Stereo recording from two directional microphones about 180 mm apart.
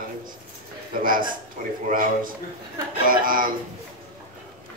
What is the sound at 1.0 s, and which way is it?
A man's voice, 50° right (ahead or behind).